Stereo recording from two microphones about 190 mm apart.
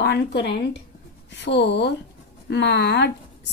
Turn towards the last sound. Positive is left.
turn(degrees=65)  # may be behind; listen again after turning